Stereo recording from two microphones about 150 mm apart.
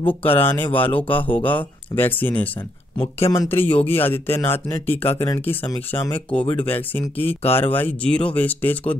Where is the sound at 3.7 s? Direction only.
40° left (ahead or behind).